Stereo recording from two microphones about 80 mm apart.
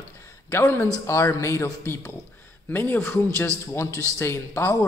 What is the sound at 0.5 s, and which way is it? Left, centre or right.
A man's voice, left.